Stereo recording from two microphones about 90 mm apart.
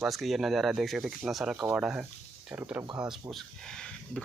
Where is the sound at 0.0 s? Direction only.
Centre (ahead or behind); by 2.8 s 20° right (ahead or behind).